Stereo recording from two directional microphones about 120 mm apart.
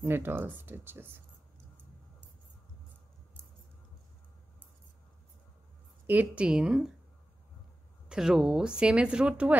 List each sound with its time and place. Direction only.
0.0 s speech: 20° right (ahead or behind)
6.0 s speech: 10° right (ahead or behind)
8.1 s speech: 5° right (ahead or behind)